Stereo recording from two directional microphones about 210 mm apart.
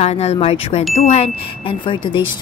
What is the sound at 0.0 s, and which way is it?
A woman's voice, 30° left (ahead or behind).